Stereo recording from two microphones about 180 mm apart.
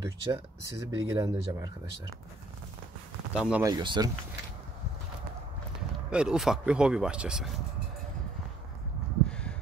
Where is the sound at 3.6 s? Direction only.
25° right (ahead or behind).